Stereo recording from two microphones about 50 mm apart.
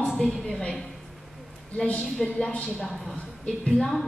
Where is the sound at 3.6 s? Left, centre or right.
Centre.